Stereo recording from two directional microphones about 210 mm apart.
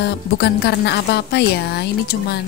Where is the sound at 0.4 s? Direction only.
50° left (ahead or behind).